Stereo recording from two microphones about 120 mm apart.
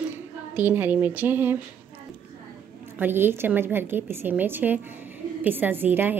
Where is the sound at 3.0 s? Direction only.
20° right (ahead or behind).